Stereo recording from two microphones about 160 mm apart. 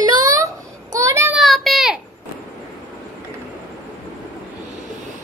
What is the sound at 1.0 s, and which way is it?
Child singing, 15° right (ahead or behind).